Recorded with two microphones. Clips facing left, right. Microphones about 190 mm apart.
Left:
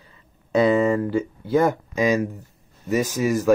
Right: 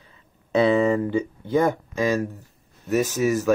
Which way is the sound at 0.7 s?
Centre (ahead or behind).